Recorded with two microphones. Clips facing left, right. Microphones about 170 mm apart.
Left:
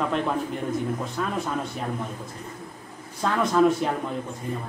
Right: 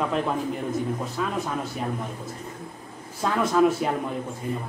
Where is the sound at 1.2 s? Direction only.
5° right (ahead or behind).